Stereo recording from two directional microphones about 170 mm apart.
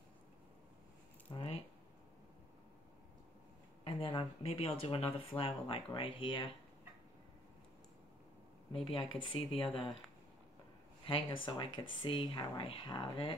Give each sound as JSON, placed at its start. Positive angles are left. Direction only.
{"t": 1.3, "sound": "keys jangling", "side_deg": 35}
{"t": 3.8, "sound": "speech", "side_deg": 35}
{"t": 8.8, "sound": "speech", "side_deg": 30}
{"t": 11.1, "sound": "speech", "side_deg": 30}